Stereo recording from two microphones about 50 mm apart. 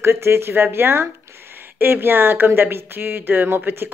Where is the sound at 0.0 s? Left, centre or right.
Right.